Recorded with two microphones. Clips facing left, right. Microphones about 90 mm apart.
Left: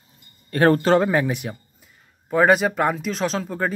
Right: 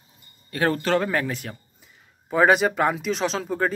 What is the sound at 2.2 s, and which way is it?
Speech, centre (ahead or behind).